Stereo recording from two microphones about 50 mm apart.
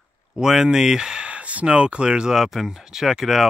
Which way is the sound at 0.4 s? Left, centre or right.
Centre.